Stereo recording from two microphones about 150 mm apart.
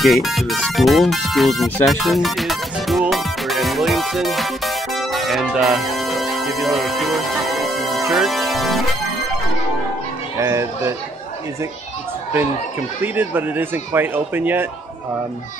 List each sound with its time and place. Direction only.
0.0 s music: centre (ahead or behind)
10.4 s speech: 20° right (ahead or behind)
13.0 s speech: 15° right (ahead or behind)